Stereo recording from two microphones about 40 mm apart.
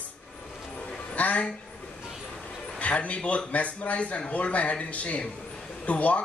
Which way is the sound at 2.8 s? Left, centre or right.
Left.